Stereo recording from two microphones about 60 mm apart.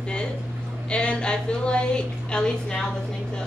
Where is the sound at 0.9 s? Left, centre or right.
Centre.